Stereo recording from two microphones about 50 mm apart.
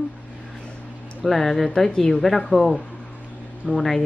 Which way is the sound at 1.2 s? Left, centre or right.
Centre.